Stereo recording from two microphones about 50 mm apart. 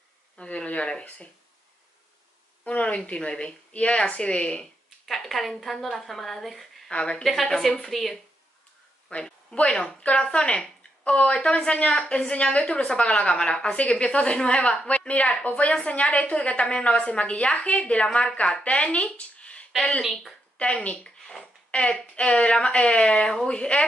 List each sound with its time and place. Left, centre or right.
0.4 s a woman's voice: left
2.6 s a woman's voice: left
5.0 s a sound: centre
5.5 s a woman's voice: centre
6.9 s a woman's voice: left
7.4 s a woman's voice: centre
9.1 s a woman's voice: left
20.0 s a woman's voice: centre
20.5 s a woman's voice: left